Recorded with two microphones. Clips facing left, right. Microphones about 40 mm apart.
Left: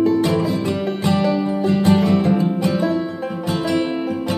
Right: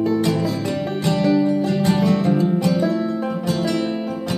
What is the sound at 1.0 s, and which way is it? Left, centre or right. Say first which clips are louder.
Music: right 2 dB; centre.